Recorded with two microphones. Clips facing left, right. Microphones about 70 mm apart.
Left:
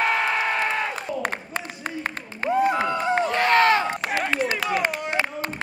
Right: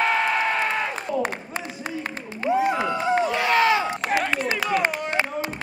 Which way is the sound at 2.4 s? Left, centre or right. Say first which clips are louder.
Even; left.